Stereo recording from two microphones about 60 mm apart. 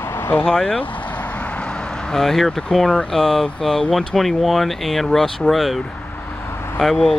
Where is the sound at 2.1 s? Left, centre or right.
Centre.